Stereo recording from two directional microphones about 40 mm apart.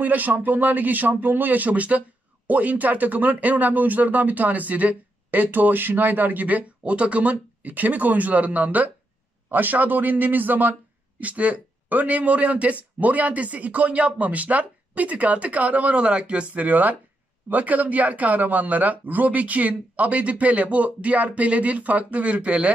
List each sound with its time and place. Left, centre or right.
0.0 s speech: right
6.8 s speech: right